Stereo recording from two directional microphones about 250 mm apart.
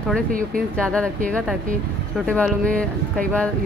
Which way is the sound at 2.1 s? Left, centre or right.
Centre.